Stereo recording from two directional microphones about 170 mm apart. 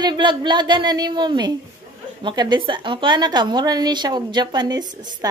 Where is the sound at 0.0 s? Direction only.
25° right (ahead or behind).